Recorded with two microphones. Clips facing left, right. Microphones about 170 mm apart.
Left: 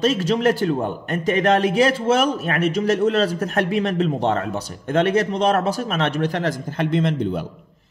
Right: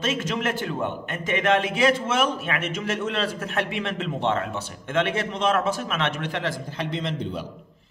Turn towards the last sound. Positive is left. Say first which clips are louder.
# left 8 dB
turn(degrees=50)  # may be behind; listen again after turning